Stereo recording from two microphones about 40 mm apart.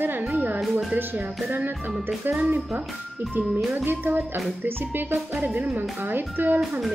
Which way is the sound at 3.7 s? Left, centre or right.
Right.